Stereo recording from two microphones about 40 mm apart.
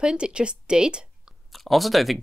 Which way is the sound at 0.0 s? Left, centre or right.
Right.